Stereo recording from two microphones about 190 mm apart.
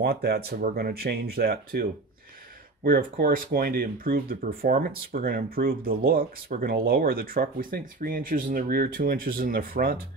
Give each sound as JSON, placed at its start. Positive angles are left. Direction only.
{"t": 0.0, "sound": "speech", "side_deg": -55}